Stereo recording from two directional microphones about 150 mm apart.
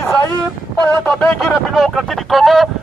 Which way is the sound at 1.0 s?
Centre (ahead or behind).